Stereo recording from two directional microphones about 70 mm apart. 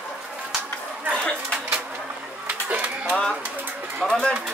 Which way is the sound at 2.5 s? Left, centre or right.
Right.